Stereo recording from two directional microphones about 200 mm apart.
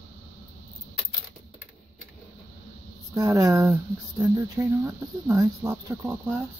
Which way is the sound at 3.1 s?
15° right (ahead or behind).